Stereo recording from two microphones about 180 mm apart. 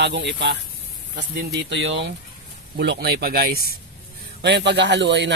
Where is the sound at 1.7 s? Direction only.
75° right (ahead or behind).